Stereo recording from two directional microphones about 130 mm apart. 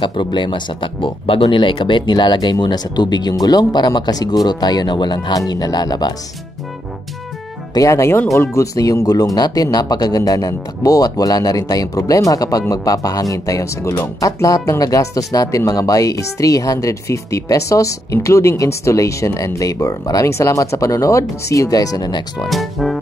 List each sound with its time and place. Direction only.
0.0 s speech: 40° left (ahead or behind)
7.7 s speech: 25° left (ahead or behind)
22.5 s music: centre (ahead or behind)